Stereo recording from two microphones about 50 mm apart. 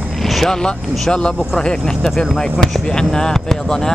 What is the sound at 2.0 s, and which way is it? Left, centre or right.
Speech, centre.